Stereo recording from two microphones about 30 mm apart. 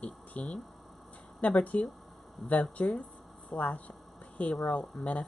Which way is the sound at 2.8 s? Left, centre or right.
Left.